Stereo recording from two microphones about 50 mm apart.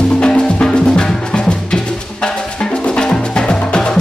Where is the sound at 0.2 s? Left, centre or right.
Centre.